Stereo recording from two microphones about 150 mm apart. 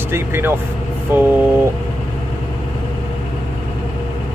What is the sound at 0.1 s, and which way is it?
Speech, 15° right (ahead or behind).